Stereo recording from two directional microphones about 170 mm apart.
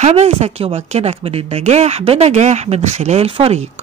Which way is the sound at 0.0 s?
40° right (ahead or behind).